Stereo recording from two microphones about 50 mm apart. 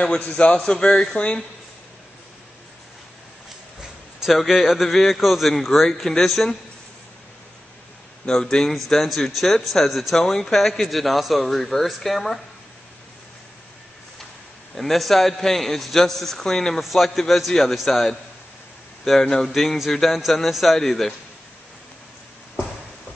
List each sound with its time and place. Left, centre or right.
0.2 s a man's voice: left
0.5 s a man's voice: centre
4.2 s speech: centre
8.3 s speech: centre
14.8 s a man's voice: centre